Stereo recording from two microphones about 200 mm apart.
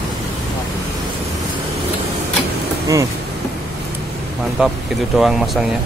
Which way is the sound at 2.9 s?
15° right (ahead or behind).